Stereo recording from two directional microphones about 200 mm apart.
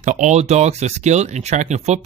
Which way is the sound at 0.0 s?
35° right (ahead or behind).